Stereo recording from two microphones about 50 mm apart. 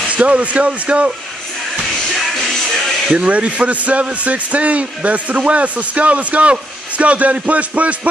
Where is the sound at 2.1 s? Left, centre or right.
Centre.